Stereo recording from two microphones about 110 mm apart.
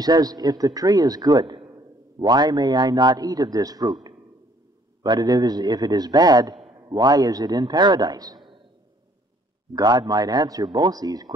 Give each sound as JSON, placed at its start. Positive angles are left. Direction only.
{"t": 0.0, "sound": "a man's voice", "side_deg": -35}
{"t": 9.8, "sound": "a man's voice", "side_deg": -40}